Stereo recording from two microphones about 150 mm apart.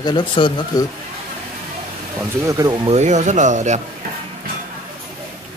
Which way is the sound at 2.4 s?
20° right (ahead or behind).